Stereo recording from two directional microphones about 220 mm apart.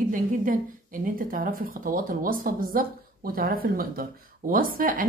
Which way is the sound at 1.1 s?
40° right (ahead or behind).